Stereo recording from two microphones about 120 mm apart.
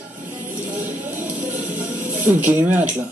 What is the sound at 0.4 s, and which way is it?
Music, 15° right (ahead or behind).